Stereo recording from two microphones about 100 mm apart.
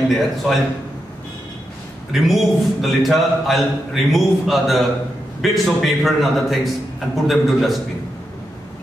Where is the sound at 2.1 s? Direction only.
Centre (ahead or behind).